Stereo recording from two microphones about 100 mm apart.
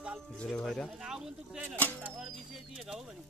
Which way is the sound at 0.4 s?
5° left (ahead or behind).